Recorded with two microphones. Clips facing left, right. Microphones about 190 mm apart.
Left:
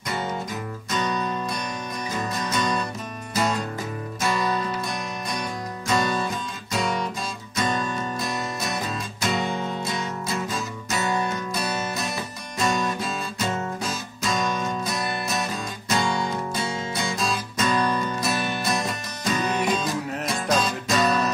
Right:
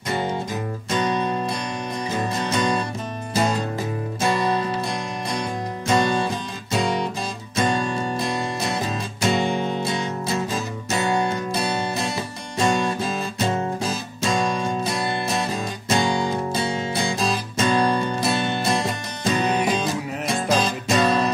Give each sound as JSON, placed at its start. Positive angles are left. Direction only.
{"t": 0.8, "sound": "music", "side_deg": -30}
{"t": 4.2, "sound": "music", "side_deg": -30}